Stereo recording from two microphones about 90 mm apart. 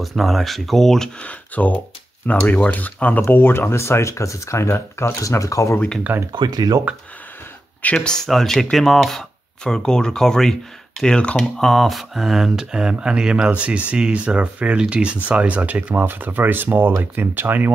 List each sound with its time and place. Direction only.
0.0 s speech: centre (ahead or behind)
1.5 s speech: 20° left (ahead or behind); by 5.8 s 35° left (ahead or behind)
6.3 s speech: 50° right (ahead or behind)
7.8 s speech: 10° left (ahead or behind); by 17.6 s 20° right (ahead or behind)